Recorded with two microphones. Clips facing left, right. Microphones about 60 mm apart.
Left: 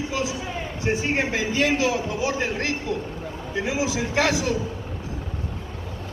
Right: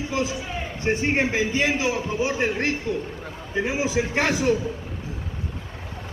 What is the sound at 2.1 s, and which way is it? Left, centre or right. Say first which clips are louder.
Speech: right 1 dB; right.